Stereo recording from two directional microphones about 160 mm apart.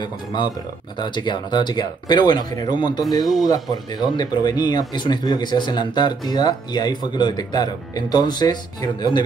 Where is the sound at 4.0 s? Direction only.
25° left (ahead or behind).